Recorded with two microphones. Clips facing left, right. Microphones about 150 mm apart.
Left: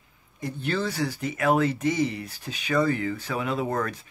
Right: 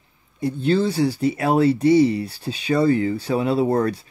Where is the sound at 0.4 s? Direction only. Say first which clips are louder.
Right 9 dB; 30° right (ahead or behind).